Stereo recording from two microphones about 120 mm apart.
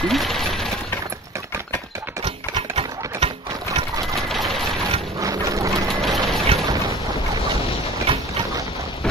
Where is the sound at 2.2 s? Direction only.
55° right (ahead or behind).